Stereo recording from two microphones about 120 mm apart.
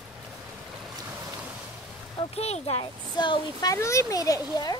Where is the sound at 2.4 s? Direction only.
60° left (ahead or behind).